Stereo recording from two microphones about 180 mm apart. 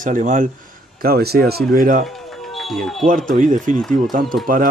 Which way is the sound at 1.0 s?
60° right (ahead or behind).